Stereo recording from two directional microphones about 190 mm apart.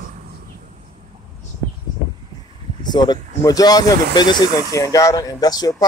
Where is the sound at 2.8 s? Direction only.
20° left (ahead or behind).